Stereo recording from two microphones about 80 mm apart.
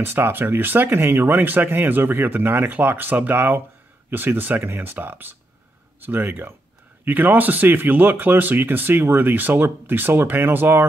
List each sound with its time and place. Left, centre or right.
0.0 s speech: right